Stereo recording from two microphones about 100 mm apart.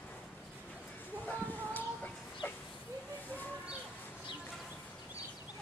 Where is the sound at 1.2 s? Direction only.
15° left (ahead or behind).